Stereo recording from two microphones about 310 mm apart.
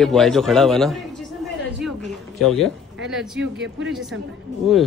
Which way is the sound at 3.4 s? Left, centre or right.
Right.